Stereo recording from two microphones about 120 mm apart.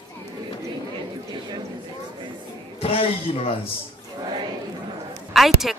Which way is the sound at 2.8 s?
50° left (ahead or behind).